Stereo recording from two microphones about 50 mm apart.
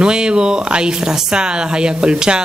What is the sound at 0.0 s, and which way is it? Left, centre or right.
Speech, centre.